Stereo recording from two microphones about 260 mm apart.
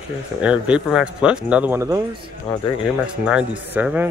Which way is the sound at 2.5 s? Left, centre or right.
Centre.